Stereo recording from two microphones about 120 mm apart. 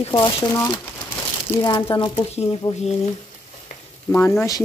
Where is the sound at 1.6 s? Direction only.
35° left (ahead or behind).